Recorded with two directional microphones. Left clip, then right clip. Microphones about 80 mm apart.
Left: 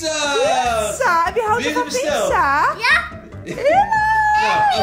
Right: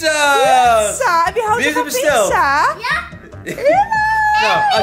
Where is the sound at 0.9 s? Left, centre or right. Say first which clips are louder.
Right 2 dB; centre.